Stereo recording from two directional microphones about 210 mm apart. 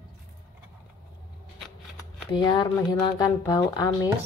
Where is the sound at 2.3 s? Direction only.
20° left (ahead or behind).